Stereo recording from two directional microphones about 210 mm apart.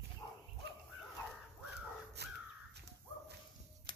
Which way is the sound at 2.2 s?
55° right (ahead or behind).